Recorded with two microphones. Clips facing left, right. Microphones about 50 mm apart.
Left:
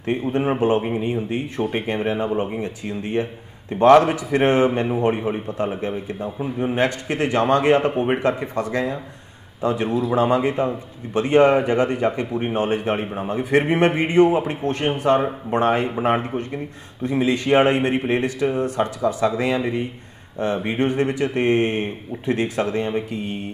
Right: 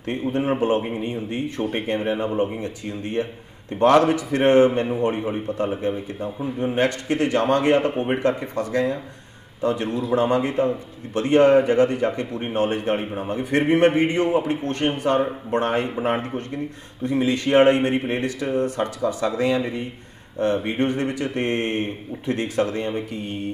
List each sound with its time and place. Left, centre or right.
0.1 s a man's voice: centre